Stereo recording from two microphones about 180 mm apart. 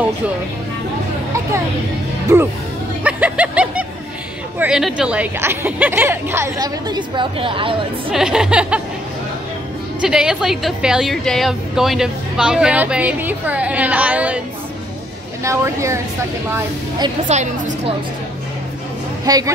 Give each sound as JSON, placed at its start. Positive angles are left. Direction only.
{"t": 3.0, "sound": "snicker", "side_deg": -10}
{"t": 4.6, "sound": "speech", "side_deg": -5}
{"t": 8.1, "sound": "a woman's voice", "side_deg": -5}
{"t": 10.0, "sound": "a woman's voice", "side_deg": -5}
{"t": 15.4, "sound": "speech", "side_deg": -15}
{"t": 17.3, "sound": "a woman's voice", "side_deg": -40}
{"t": 19.2, "sound": "speech", "side_deg": -20}